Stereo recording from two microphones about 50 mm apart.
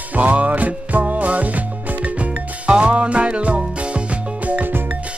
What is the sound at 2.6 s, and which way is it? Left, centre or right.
Music, right.